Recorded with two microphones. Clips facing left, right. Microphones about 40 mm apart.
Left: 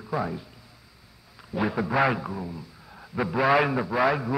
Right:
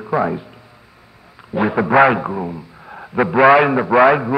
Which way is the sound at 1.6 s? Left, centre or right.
Right.